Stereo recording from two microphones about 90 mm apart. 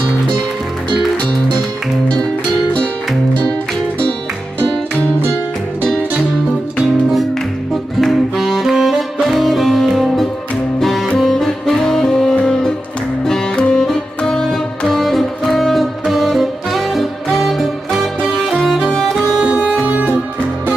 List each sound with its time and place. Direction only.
5.2 s music: 25° right (ahead or behind)
6.8 s music: centre (ahead or behind)
8.0 s saxophone: centre (ahead or behind)
13.2 s music: 5° left (ahead or behind); by 20.2 s 15° right (ahead or behind)